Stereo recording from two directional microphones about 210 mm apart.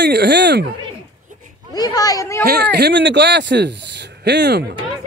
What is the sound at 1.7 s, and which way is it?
Speech, 20° left (ahead or behind).